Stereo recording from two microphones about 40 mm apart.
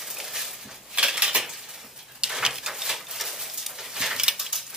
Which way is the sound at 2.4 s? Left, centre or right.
Centre.